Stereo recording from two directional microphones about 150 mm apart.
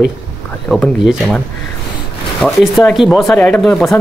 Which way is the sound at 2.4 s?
5° left (ahead or behind).